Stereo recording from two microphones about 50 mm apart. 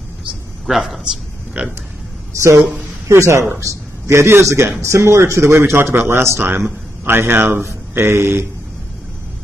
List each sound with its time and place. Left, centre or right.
0.7 s a man's voice: centre
1.6 s a sound: right
3.1 s a man's voice: right
5.8 s a man's voice: right
6.4 s speech: right